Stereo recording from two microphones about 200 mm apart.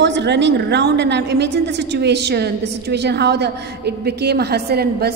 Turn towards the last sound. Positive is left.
turn(degrees=-50)  # may be behind; listen again after turning